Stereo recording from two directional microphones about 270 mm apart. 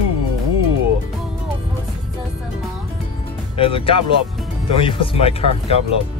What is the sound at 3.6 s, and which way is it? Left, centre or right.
Speech, centre.